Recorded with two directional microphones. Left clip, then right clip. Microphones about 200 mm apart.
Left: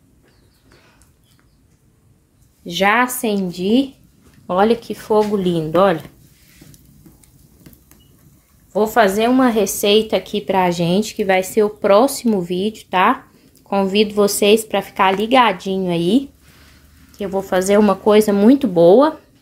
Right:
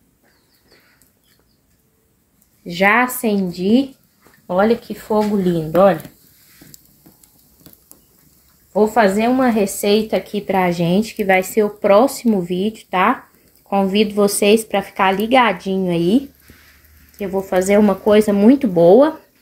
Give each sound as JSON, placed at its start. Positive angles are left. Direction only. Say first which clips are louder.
{"t": 2.8, "sound": "a woman's voice", "louder": "right 1 dB", "side_deg": 10}
{"t": 4.5, "sound": "a woman's voice", "louder": "even", "side_deg": 15}
{"t": 8.7, "sound": "a woman's voice", "louder": "even", "side_deg": 15}
{"t": 17.2, "sound": "a woman's voice", "louder": "even", "side_deg": 10}